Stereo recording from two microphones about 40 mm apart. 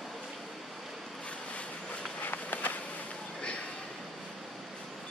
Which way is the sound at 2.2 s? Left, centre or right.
Left.